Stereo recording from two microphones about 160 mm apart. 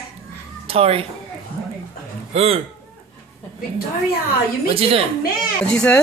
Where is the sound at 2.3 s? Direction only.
40° right (ahead or behind).